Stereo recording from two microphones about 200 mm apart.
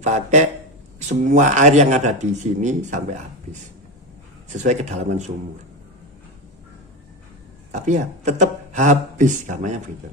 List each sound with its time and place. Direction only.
0.0 s speech: 35° right (ahead or behind)
4.5 s speech: 35° right (ahead or behind)
7.7 s speech: 35° right (ahead or behind)